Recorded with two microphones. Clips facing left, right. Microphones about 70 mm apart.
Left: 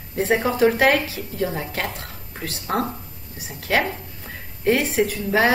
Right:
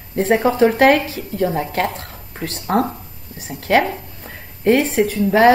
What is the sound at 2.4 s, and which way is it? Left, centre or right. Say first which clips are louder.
Speech: right 6 dB; centre.